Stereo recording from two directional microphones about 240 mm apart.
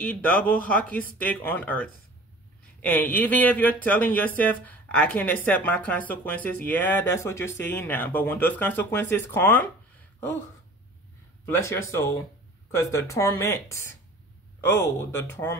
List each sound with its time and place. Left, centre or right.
0.1 s speech: centre
11.4 s speech: centre